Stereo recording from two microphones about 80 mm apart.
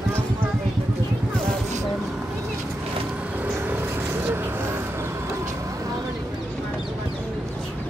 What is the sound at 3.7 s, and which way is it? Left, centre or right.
Vehicle, right.